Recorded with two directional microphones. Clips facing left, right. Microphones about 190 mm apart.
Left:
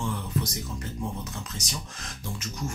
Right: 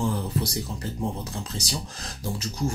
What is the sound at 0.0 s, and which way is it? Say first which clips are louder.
Speech: right 4 dB; 35° right (ahead or behind).